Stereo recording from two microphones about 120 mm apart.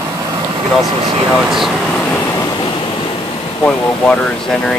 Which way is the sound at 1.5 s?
Centre (ahead or behind).